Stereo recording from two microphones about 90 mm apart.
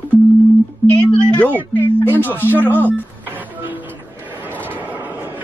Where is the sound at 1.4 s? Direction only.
20° left (ahead or behind).